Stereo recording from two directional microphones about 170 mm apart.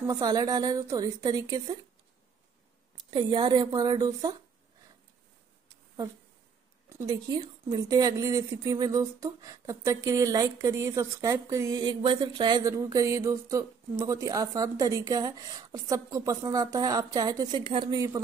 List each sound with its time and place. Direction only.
0.0 s a woman's voice: 20° right (ahead or behind)
3.0 s a woman's voice: 25° right (ahead or behind)
6.9 s a woman's voice: 20° right (ahead or behind)